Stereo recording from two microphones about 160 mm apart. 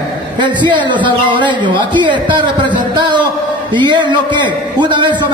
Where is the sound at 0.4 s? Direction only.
30° right (ahead or behind).